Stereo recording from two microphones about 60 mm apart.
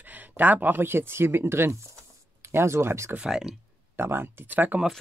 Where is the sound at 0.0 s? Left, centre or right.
Right.